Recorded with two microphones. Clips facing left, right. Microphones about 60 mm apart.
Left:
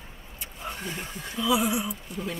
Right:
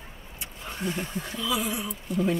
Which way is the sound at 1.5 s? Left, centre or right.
Centre.